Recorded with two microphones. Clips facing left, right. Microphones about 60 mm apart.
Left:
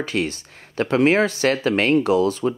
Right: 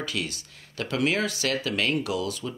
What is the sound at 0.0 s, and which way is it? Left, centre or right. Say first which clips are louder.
Speech: left 8 dB; left.